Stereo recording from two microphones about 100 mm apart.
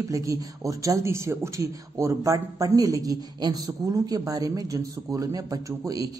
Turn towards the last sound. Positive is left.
turn(degrees=-35)  # may be behind; listen again after turning